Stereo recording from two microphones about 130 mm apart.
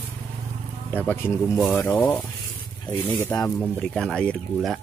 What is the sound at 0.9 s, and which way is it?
Speech, 15° left (ahead or behind).